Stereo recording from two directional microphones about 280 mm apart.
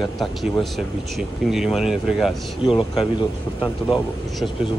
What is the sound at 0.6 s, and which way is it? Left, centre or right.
Speech, centre.